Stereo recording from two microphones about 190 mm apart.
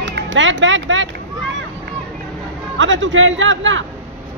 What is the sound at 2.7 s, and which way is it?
A man's voice, 80° right.